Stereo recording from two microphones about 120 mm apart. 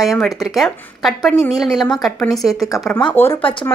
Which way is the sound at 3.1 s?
20° left (ahead or behind).